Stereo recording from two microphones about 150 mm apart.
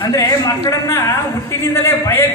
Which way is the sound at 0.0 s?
20° left (ahead or behind).